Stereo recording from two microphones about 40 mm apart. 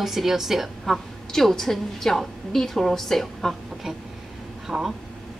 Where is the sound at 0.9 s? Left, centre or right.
Centre.